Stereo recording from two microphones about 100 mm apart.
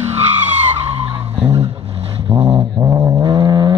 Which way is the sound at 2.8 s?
40° right (ahead or behind).